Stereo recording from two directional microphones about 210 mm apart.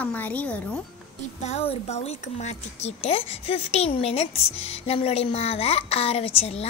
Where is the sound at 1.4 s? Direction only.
30° left (ahead or behind).